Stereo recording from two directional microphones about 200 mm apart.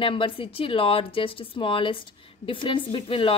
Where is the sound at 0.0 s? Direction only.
25° left (ahead or behind).